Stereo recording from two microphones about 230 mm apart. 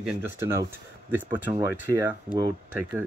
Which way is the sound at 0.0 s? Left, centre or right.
Centre.